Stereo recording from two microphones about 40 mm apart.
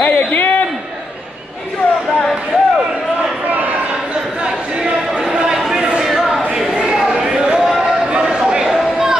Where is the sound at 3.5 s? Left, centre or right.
Right.